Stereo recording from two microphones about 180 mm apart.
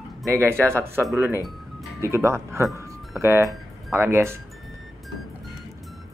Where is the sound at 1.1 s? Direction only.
15° right (ahead or behind).